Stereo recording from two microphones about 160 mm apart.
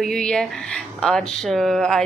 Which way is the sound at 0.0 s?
5° left (ahead or behind).